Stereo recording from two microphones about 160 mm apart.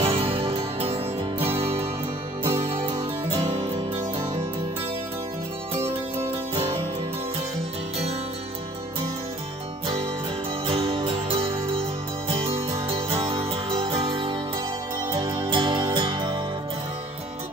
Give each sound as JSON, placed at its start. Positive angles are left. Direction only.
{"t": 0.0, "sound": "music", "side_deg": -35}
{"t": 5.8, "sound": "music", "side_deg": -15}
{"t": 10.7, "sound": "music", "side_deg": -35}